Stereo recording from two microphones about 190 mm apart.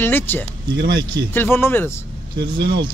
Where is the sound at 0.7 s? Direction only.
55° right (ahead or behind).